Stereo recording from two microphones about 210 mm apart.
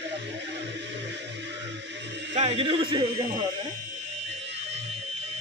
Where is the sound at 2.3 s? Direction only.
30° right (ahead or behind).